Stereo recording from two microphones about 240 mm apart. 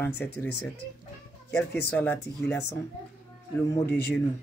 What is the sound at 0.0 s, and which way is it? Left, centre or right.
Speech, centre.